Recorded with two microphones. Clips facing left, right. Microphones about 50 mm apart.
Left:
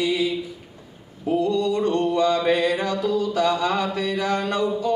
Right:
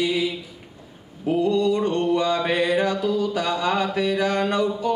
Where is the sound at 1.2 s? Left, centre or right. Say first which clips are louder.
Right 1 dB; right.